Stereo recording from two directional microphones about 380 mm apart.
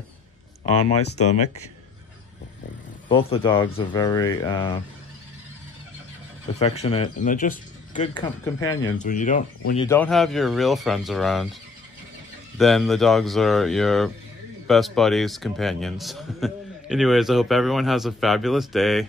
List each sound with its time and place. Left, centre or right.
0.7 s speech: centre
3.1 s speech: centre
6.6 s speech: centre
9.8 s a man's voice: centre
12.5 s a man's voice: centre